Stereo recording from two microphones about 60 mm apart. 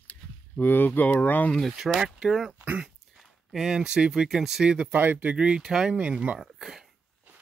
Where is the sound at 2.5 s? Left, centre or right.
Right.